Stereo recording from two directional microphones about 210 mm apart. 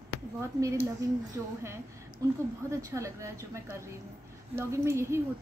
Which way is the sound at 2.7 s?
15° right (ahead or behind).